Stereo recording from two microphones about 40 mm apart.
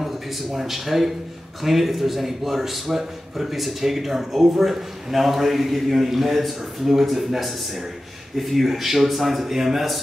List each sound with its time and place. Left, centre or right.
0.0 s a man's voice: centre